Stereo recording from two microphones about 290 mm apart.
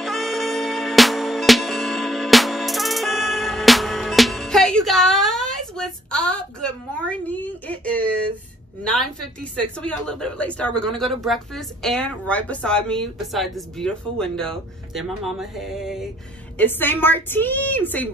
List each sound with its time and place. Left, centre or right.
0.0 s music: centre
8.8 s a woman's voice: centre